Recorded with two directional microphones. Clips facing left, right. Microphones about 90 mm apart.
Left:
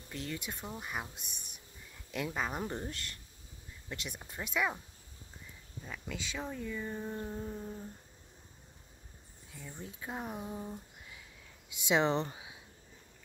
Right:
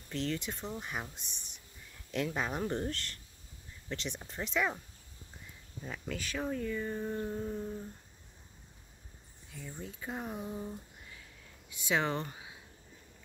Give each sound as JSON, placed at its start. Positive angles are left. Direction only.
{"t": 0.1, "sound": "speech", "side_deg": 5}
{"t": 6.0, "sound": "speech", "side_deg": 0}
{"t": 9.9, "sound": "speech", "side_deg": 5}
{"t": 11.7, "sound": "speech", "side_deg": 20}